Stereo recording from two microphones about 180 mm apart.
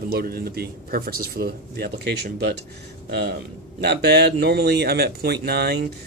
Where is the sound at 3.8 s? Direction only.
65° right (ahead or behind).